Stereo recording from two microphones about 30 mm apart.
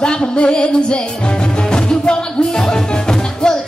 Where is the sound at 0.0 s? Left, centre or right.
Left.